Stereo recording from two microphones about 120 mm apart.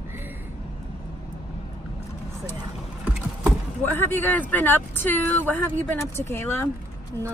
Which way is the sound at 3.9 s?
15° left (ahead or behind).